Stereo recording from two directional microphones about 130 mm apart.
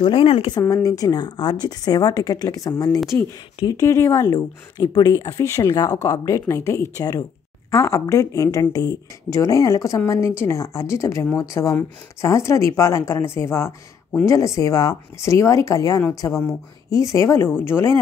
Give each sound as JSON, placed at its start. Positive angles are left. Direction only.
{"t": 0.0, "sound": "speech", "side_deg": 40}
{"t": 0.8, "sound": "speech", "side_deg": 25}